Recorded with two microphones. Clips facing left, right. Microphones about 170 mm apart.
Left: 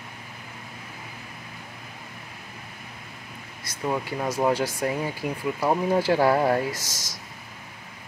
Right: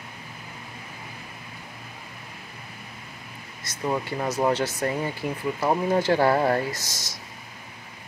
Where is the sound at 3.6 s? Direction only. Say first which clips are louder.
Right 1 dB; 5° left (ahead or behind).